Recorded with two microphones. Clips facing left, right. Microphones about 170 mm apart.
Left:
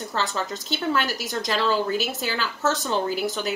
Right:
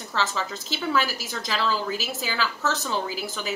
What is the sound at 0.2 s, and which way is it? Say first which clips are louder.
A woman's voice: right 1 dB; centre (ahead or behind).